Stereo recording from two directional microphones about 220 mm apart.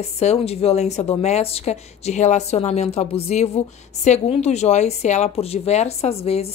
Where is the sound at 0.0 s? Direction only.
30° left (ahead or behind).